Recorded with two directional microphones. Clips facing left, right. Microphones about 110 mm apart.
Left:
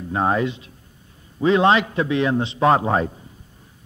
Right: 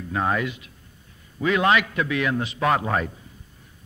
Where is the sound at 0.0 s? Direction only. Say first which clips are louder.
Left 4 dB; 30° left (ahead or behind).